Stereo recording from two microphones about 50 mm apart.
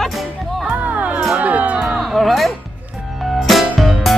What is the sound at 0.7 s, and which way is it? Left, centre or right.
Music, right.